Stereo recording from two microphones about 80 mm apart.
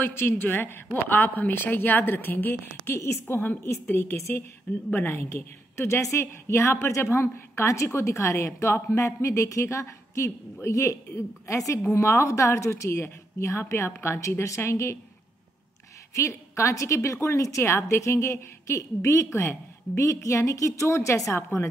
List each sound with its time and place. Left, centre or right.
0.0 s a woman's voice: left
16.2 s a woman's voice: left